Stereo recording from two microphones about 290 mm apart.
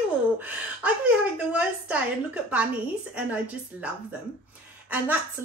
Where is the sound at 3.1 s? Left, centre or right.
Centre.